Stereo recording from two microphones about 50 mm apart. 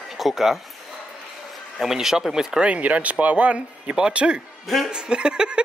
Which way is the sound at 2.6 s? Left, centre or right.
Right.